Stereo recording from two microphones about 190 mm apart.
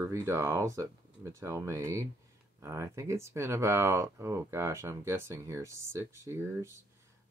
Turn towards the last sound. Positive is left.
turn(degrees=-15)  # may be behind; listen again after turning